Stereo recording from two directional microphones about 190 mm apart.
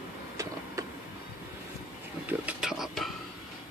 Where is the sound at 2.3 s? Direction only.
5° right (ahead or behind).